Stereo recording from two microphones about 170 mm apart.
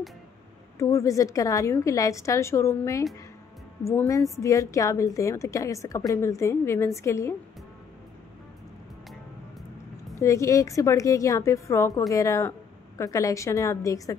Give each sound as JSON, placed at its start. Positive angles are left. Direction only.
{"t": 0.7, "sound": "a woman's voice", "side_deg": 20}
{"t": 10.1, "sound": "a woman's voice", "side_deg": 15}